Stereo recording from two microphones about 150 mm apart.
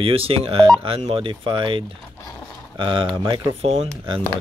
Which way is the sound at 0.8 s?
40° right (ahead or behind).